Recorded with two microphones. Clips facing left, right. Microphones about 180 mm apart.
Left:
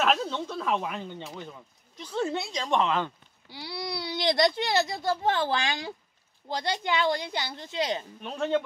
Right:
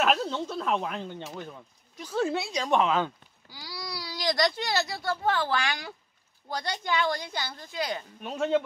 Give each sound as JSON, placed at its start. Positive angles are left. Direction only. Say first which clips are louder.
{"t": 0.0, "sound": "speech", "louder": "even", "side_deg": -5}
{"t": 3.5, "sound": "a child's voice", "louder": "left 5 dB", "side_deg": 25}
{"t": 8.2, "sound": "speech", "louder": "right 2 dB", "side_deg": -5}